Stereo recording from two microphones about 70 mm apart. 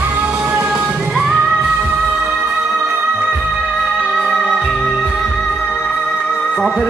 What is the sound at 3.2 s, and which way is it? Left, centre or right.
Music, centre.